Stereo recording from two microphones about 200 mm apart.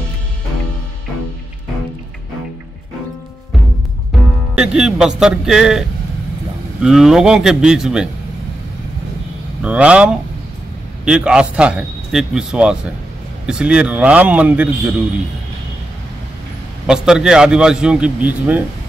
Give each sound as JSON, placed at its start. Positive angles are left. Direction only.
{"t": 4.6, "sound": "speech", "side_deg": -5}
{"t": 9.6, "sound": "speech", "side_deg": -5}
{"t": 16.8, "sound": "speech", "side_deg": -5}